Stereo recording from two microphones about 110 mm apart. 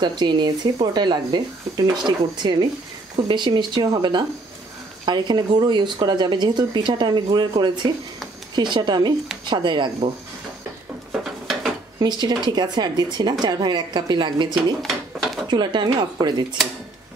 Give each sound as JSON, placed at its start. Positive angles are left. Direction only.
{"t": 0.0, "sound": "a woman's voice", "side_deg": -40}
{"t": 11.1, "sound": "dishes", "side_deg": 0}
{"t": 12.0, "sound": "speech", "side_deg": -40}
{"t": 14.5, "sound": "a sound", "side_deg": 0}
{"t": 15.4, "sound": "speech", "side_deg": -45}